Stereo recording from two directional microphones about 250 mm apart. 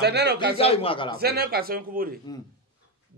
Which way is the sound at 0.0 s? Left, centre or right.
Right.